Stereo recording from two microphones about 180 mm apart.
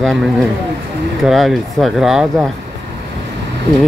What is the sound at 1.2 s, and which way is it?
Speech, centre (ahead or behind).